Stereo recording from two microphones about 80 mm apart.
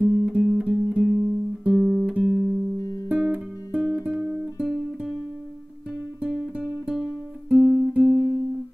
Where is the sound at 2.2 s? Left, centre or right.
Centre.